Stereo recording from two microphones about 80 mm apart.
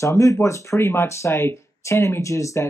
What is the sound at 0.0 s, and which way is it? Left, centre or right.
Speech, left.